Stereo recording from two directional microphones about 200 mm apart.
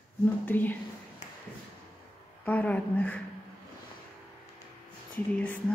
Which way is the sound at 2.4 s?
5° left (ahead or behind).